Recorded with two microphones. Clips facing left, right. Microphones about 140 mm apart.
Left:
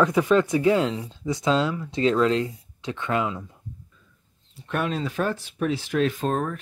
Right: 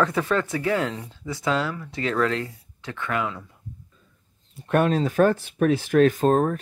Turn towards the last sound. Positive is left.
turn(degrees=-40)  # may be behind; listen again after turning